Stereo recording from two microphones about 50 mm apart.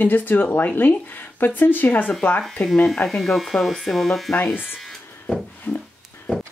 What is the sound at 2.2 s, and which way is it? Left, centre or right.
Speech, left.